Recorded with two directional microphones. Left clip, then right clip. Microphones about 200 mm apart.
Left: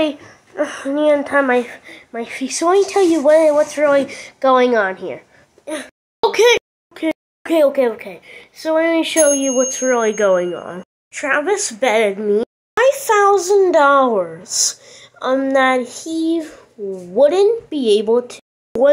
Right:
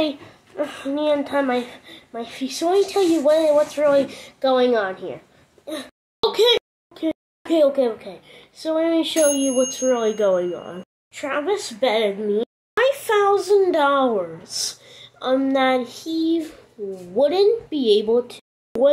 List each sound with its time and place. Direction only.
0.6 s a woman's voice: 10° left (ahead or behind)
6.9 s a child's voice: 20° left (ahead or behind)
18.7 s speech: centre (ahead or behind)